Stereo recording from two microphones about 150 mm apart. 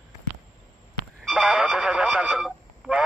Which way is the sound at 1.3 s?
10° right (ahead or behind).